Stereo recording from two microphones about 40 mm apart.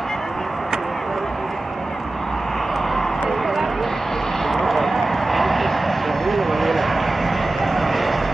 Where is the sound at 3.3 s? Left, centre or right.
Centre.